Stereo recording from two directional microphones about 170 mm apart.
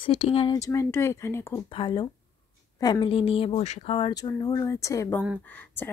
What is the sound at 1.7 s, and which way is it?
Speech, 30° left (ahead or behind).